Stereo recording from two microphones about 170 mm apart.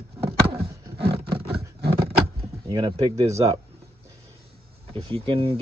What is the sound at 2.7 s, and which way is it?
Speech, 30° right (ahead or behind).